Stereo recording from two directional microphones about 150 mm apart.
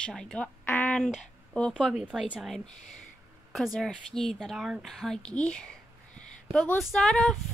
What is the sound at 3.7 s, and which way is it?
A woman's voice, 5° left (ahead or behind).